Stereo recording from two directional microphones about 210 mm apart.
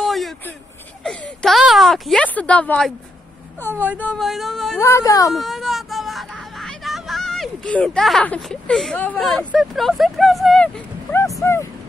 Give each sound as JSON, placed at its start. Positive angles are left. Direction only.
{"t": 0.0, "sound": "a sound", "side_deg": 0}
{"t": 1.0, "sound": "speech", "side_deg": 0}
{"t": 3.7, "sound": "speech", "side_deg": -5}
{"t": 4.0, "sound": "speech", "side_deg": 5}
{"t": 4.7, "sound": "speech", "side_deg": 15}
{"t": 5.3, "sound": "speech", "side_deg": 0}